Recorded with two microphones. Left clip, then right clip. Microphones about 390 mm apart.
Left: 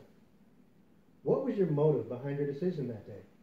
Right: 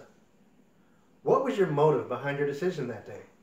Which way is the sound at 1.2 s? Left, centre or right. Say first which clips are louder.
Right 6 dB; centre.